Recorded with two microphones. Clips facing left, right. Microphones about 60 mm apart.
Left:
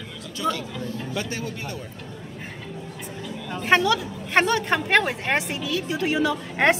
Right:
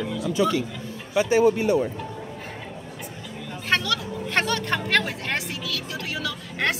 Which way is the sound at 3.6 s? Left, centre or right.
Centre.